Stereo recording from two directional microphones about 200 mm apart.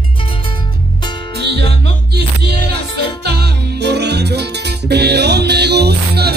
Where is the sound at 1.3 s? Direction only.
55° right (ahead or behind).